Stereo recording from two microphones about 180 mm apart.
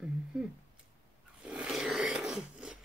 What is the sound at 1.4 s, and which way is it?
Roar, 5° right (ahead or behind).